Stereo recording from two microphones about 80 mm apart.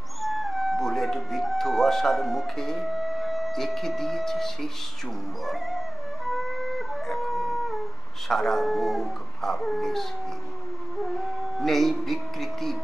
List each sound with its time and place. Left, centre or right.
0.2 s howl: centre
5.5 s dog: centre
8.3 s speech: centre
11.5 s speech: centre